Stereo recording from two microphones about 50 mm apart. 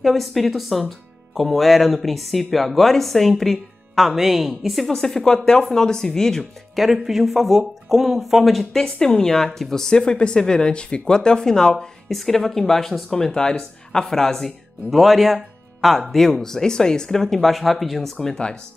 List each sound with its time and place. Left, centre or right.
0.0 s speech: centre
6.7 s speech: centre
8.9 s speech: centre
18.1 s speech: centre